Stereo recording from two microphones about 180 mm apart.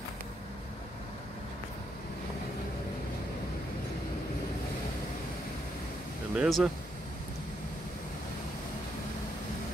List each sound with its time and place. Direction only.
6.3 s speech: 5° right (ahead or behind)